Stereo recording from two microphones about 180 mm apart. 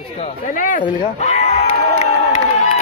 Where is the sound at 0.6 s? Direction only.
45° left (ahead or behind).